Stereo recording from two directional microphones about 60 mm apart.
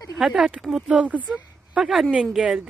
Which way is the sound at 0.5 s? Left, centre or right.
Centre.